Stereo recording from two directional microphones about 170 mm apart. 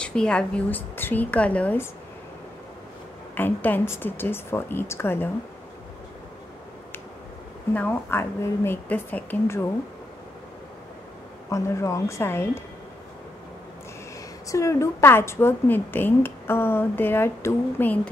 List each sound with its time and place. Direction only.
0.0 s a woman's voice: 5° left (ahead or behind)
3.3 s a woman's voice: 10° left (ahead or behind)
7.7 s a woman's voice: 10° left (ahead or behind)
11.4 s a woman's voice: 15° left (ahead or behind)
14.5 s a woman's voice: 15° left (ahead or behind)